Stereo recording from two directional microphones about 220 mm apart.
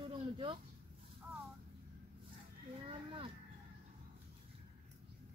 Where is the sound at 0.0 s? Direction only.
25° right (ahead or behind).